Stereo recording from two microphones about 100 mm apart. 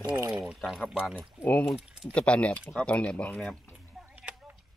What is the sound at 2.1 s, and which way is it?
Speech, 10° left (ahead or behind).